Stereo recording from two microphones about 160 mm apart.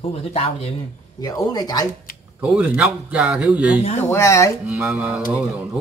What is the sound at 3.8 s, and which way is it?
Speech, 45° left (ahead or behind).